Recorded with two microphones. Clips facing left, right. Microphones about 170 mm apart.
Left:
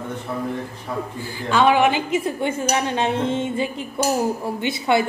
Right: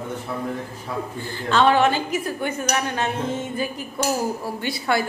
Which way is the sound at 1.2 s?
10° left (ahead or behind).